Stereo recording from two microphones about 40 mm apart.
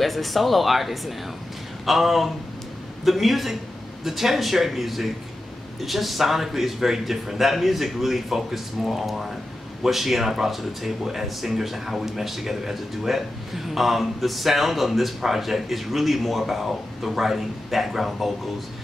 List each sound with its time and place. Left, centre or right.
0.0 s speech: centre